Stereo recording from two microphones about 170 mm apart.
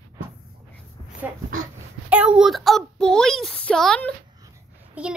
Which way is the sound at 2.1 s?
5° right (ahead or behind).